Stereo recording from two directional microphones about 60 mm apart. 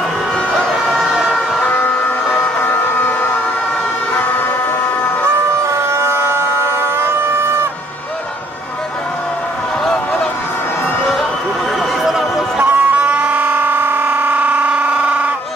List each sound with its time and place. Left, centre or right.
0.9 s vehicle: centre
1.6 s vehicle: left
4.1 s emergency vehicle: left
5.7 s siren: right
12.0 s a sound: centre
12.6 s a sound: right